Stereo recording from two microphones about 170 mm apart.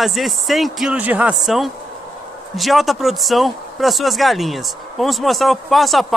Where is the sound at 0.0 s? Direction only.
Centre (ahead or behind).